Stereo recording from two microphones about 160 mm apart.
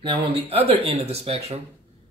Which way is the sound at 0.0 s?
35° right (ahead or behind).